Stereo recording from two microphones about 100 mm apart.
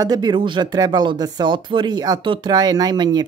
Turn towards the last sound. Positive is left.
turn(degrees=-45)  # may be behind; listen again after turning